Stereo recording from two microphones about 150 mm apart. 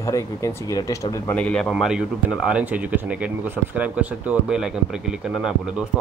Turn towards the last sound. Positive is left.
turn(degrees=-5)  # may be behind; listen again after turning